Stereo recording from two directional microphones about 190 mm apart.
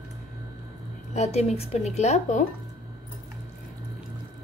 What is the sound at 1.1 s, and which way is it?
Speech, 35° left (ahead or behind).